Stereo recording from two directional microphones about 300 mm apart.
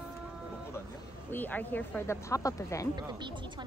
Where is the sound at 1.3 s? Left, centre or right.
Centre.